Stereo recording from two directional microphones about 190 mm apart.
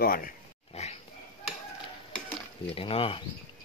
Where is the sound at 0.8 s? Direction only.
35° left (ahead or behind).